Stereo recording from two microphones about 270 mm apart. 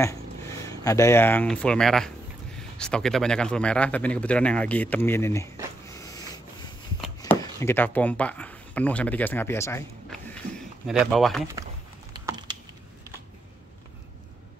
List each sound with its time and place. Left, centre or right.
0.7 s speech: centre
5.9 s sanding: centre
7.2 s speech: centre
12.1 s typing: centre